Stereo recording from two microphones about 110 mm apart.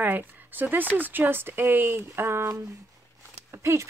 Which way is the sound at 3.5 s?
25° right (ahead or behind).